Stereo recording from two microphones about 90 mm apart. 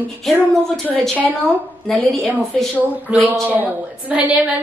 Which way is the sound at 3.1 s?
15° right (ahead or behind).